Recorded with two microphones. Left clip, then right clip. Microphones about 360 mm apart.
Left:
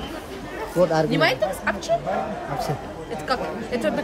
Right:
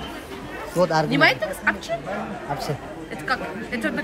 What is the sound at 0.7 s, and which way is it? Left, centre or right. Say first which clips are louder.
Speech: left 1 dB; centre.